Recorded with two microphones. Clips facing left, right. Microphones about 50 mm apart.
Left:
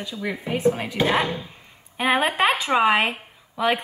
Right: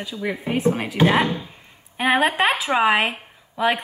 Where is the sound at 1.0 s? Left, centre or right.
Centre.